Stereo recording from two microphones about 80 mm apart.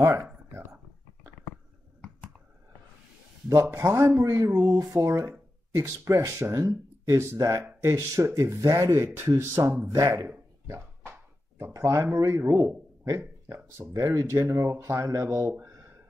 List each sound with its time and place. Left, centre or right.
0.0 s speech: right
3.4 s speech: right
4.6 s speech: right
10.0 s a sound: right
11.5 s speech: right